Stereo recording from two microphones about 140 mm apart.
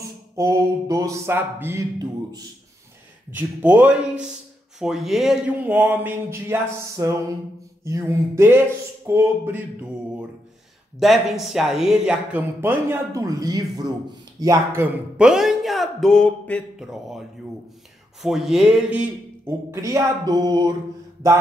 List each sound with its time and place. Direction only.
0.4 s speech: 20° right (ahead or behind)
3.3 s speech: 10° right (ahead or behind)
11.0 s speech: centre (ahead or behind)
15.2 s speech: 5° right (ahead or behind)
16.8 s speech: centre (ahead or behind)
18.2 s speech: centre (ahead or behind); by 20.7 s 30° right (ahead or behind)